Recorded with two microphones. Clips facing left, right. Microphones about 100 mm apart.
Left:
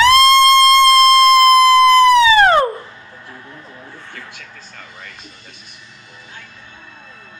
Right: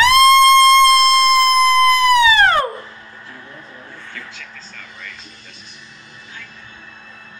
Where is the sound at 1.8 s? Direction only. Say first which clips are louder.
Left 3 dB; 30° left (ahead or behind).